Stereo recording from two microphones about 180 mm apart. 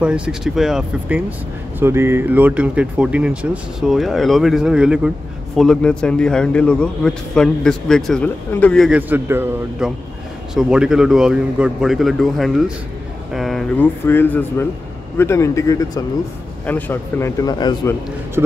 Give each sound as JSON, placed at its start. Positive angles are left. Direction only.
{"t": 0.0, "sound": "a man's voice", "side_deg": -5}
{"t": 9.1, "sound": "a man's voice", "side_deg": -10}